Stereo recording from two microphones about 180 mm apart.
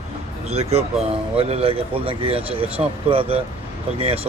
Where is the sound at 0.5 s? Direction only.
35° right (ahead or behind).